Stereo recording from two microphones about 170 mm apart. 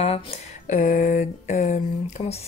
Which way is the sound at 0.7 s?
50° left (ahead or behind).